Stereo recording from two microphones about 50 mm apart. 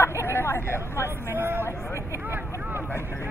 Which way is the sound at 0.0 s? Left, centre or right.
Left.